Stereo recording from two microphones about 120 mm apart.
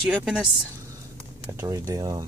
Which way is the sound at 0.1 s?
5° right (ahead or behind).